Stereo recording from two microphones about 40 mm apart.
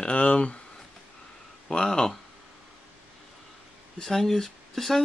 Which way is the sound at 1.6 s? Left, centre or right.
Centre.